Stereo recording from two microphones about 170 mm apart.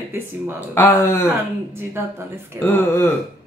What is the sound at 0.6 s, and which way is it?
Speech, 15° left (ahead or behind).